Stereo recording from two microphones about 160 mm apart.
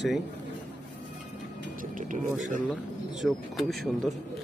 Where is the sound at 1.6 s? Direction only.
55° right (ahead or behind).